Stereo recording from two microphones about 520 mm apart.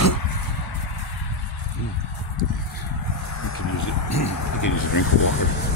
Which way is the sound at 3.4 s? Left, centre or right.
Left.